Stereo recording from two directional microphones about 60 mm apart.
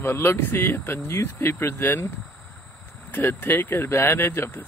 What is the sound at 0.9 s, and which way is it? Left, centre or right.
Speech, left.